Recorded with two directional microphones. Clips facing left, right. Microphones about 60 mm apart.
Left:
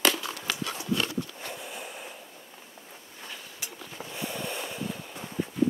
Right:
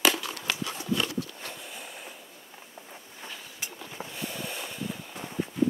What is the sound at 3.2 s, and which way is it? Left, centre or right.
Vehicle, centre.